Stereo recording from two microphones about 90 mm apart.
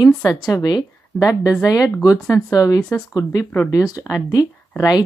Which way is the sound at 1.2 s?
40° left (ahead or behind).